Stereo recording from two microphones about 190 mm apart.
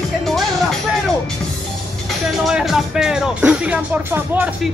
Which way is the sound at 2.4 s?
Centre (ahead or behind).